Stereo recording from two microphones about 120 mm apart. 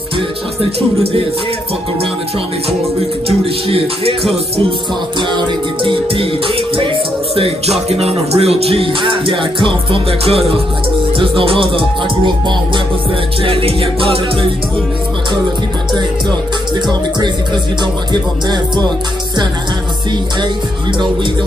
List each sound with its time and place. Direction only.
0.7 s music: 55° right (ahead or behind)
3.3 s music: 55° right (ahead or behind)
5.9 s music: 45° right (ahead or behind)